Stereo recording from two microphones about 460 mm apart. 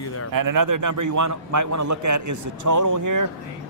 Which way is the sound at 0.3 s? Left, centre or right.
Right.